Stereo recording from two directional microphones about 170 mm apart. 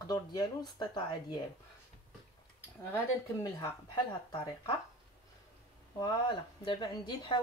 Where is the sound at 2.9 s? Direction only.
15° left (ahead or behind).